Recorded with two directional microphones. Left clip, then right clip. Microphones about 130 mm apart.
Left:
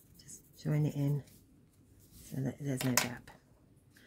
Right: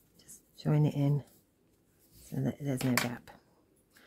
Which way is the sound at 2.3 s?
20° right (ahead or behind).